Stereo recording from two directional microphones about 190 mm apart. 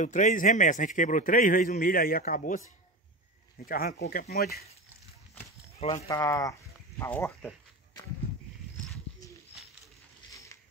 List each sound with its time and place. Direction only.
0.0 s a man's voice: 40° left (ahead or behind)
3.6 s a man's voice: 50° left (ahead or behind)
5.8 s speech: 35° left (ahead or behind)
6.0 s speech: 15° left (ahead or behind)
10.3 s a sound: 15° left (ahead or behind)